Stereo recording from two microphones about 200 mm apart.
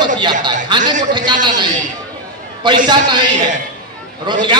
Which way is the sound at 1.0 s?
20° right (ahead or behind).